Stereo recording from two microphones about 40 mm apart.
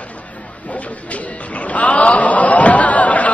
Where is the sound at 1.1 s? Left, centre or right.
Left.